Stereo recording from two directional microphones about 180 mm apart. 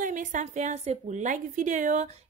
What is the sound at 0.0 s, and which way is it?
A woman's voice, 45° right (ahead or behind).